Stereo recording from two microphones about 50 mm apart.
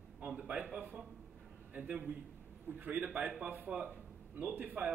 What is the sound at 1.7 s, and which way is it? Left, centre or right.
A man's voice, right.